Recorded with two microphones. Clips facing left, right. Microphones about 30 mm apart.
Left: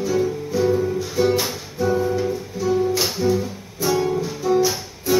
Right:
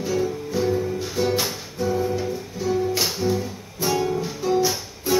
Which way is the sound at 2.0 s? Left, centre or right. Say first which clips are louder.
Left 3 dB; centre.